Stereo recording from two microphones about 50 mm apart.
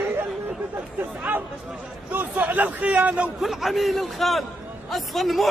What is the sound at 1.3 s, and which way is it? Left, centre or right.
A man's voice, right.